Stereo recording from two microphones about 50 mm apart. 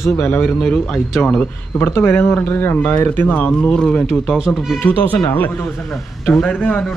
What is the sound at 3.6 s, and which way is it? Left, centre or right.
Speech, centre.